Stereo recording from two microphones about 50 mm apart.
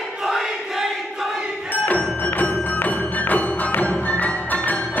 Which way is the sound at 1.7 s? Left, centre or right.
Left.